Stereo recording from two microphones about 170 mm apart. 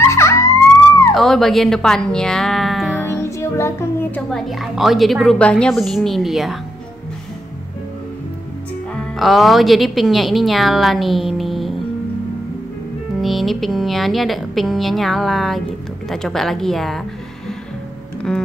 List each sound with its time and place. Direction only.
0.0 s police car: 15° left (ahead or behind)
1.1 s speech: centre (ahead or behind)
3.1 s a woman's voice: 15° left (ahead or behind); by 6.6 s centre (ahead or behind)
9.1 s a woman's voice: centre (ahead or behind)
13.2 s a woman's voice: centre (ahead or behind)